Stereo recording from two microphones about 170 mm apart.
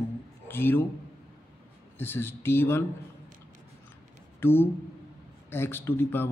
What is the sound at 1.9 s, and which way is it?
Speech, 15° left (ahead or behind).